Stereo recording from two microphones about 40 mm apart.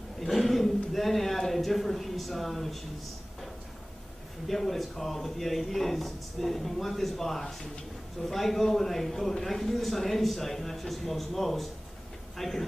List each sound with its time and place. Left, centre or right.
0.2 s a man's voice: centre
4.5 s speech: centre